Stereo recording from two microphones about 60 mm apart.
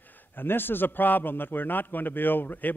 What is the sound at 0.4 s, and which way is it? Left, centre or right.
A man's voice, left.